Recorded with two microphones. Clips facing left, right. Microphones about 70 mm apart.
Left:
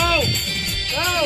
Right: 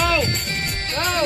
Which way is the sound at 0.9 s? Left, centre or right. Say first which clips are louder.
Left 1 dB; right.